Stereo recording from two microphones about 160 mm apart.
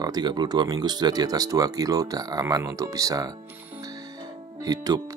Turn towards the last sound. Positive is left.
turn(degrees=-25)  # may be behind; listen again after turning